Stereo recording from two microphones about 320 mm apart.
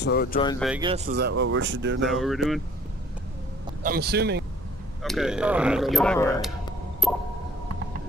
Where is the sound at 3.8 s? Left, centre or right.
Right.